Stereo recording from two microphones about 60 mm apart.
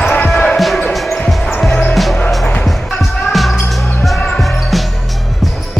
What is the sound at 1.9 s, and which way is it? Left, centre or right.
Music, centre.